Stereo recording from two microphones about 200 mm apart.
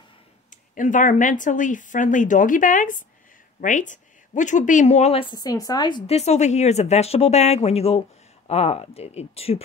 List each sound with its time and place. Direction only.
0.7 s speech: 40° left (ahead or behind)